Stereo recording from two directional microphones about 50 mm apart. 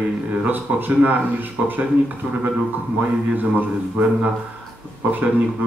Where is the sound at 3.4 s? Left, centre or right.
Right.